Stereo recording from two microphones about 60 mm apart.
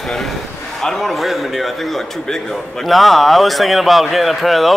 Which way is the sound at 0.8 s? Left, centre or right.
Centre.